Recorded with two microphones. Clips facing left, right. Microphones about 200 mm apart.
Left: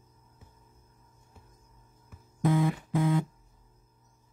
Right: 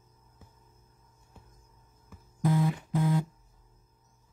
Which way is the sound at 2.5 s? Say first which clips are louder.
Left 1 dB; 90° left.